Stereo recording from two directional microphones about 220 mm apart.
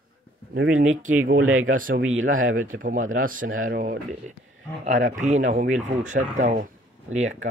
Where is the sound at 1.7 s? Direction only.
40° right (ahead or behind).